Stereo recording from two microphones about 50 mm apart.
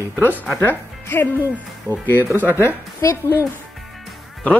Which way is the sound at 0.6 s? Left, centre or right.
Left.